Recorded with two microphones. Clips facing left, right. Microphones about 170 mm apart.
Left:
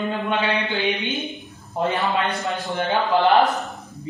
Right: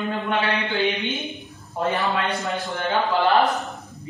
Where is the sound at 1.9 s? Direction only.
20° left (ahead or behind).